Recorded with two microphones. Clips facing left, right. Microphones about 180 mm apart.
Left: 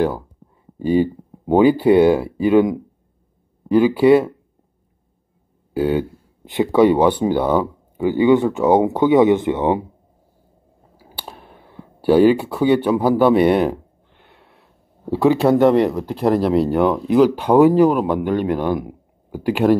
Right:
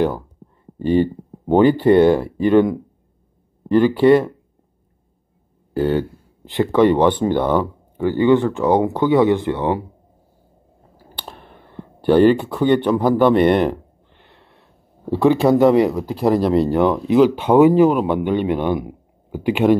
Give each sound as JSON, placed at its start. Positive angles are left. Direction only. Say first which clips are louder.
{"t": 0.7, "sound": "speech", "louder": "even", "side_deg": 5}
{"t": 5.7, "sound": "speech", "louder": "even", "side_deg": 5}
{"t": 11.0, "sound": "speech", "louder": "even", "side_deg": 5}